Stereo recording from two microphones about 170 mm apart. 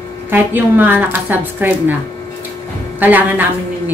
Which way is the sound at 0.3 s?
10° right (ahead or behind).